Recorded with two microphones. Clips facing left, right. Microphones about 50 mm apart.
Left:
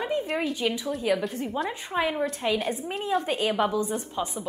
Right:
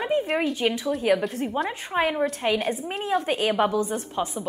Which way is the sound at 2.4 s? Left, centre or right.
Right.